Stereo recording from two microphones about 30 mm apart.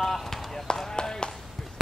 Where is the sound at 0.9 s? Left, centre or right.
Left.